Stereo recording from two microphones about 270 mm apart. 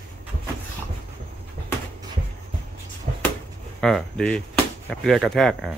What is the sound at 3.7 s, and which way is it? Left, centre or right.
Speech, centre.